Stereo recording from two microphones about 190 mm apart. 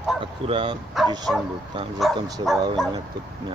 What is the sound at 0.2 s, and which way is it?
Speech, 25° right (ahead or behind).